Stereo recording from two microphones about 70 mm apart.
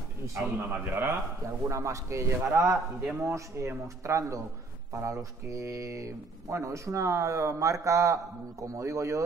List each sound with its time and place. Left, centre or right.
0.7 s a man's voice: right
1.0 s speech: right